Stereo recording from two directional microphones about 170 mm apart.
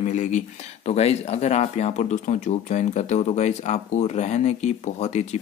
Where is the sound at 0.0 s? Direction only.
45° left (ahead or behind).